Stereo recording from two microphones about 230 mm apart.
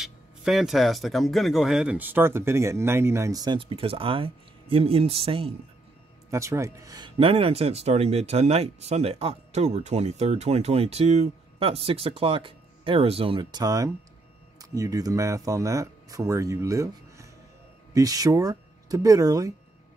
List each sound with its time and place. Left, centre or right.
0.0 s speech: centre; by 5.5 s right
6.3 s speech: centre